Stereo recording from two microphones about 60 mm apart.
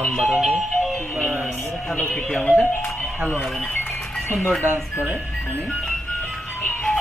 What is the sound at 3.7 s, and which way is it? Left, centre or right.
Music, left.